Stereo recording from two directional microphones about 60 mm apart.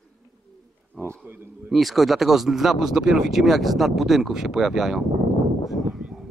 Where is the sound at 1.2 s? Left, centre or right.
Right.